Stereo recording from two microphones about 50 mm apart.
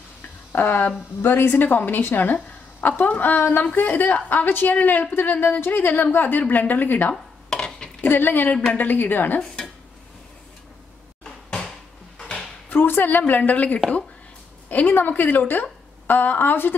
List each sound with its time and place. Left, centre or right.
0.6 s a woman's voice: left
1.2 s speech: left
1.5 s a woman's voice: left
7.4 s dishes: centre
8.1 s a woman's voice: left
11.2 s cupboard open or close: centre
12.6 s a sound: left
13.3 s a woman's voice: left